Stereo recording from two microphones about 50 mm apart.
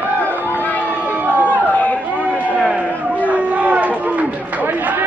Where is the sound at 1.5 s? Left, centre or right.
Left.